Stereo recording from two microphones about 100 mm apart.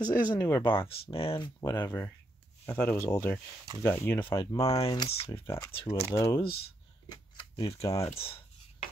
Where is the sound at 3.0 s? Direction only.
25° left (ahead or behind).